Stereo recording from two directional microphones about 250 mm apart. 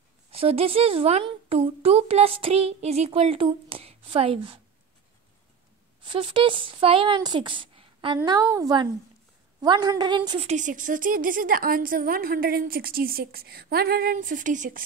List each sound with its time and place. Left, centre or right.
0.3 s speech: right
6.0 s a woman's voice: right